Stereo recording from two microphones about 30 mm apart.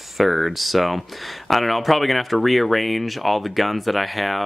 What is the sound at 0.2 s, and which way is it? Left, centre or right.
Speech, centre.